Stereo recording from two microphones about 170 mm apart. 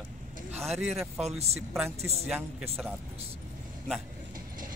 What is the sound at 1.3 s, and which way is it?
Speech, 40° right (ahead or behind).